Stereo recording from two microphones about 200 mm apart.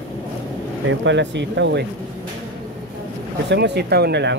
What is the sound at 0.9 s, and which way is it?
Speech, 65° right (ahead or behind).